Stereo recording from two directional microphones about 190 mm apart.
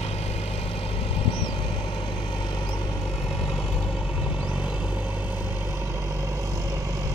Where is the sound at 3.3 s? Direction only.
Centre (ahead or behind).